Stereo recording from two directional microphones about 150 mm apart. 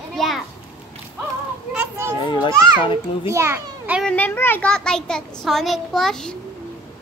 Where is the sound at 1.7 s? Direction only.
5° right (ahead or behind).